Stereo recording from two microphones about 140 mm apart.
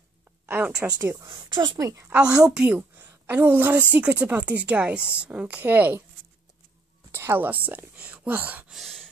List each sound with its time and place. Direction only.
0.5 s a sound: 15° right (ahead or behind)
0.8 s speech: 25° right (ahead or behind)
2.1 s a woman's voice: 5° right (ahead or behind)
7.1 s a woman's voice: 15° right (ahead or behind); by 9.0 s centre (ahead or behind)